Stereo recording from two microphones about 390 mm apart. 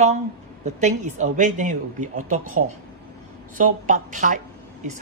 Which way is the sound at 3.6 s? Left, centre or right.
Centre.